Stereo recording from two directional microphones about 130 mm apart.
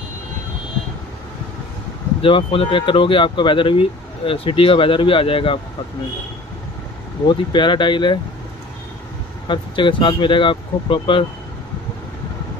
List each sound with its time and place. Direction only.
2.2 s speech: 40° left (ahead or behind)
7.2 s speech: 35° left (ahead or behind)
9.5 s speech: 40° left (ahead or behind)